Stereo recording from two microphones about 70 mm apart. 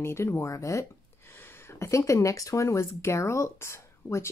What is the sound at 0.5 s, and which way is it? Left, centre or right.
Speech, left.